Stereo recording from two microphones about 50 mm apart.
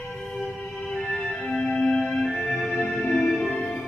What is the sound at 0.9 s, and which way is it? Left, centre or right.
Music, centre.